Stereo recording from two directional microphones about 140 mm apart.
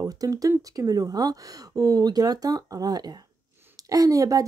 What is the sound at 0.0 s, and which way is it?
A woman's voice, 25° right (ahead or behind).